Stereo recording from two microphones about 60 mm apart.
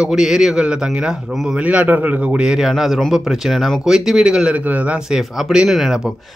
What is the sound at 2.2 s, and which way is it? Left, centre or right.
A man's voice, centre.